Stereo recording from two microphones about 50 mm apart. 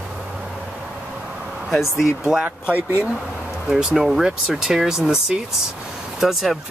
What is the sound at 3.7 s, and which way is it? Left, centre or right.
Speech, centre.